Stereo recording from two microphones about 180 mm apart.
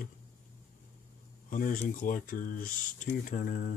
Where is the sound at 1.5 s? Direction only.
45° left (ahead or behind).